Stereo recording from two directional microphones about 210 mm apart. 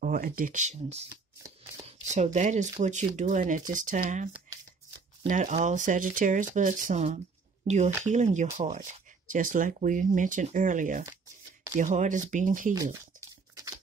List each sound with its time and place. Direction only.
0.0 s speech: 40° right (ahead or behind)
5.3 s speech: 35° right (ahead or behind)